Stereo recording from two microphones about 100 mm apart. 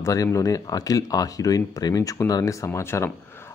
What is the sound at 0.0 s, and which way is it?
Speech, 30° left (ahead or behind).